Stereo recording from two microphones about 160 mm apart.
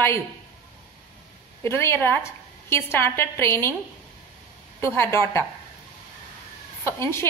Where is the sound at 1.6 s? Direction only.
15° left (ahead or behind).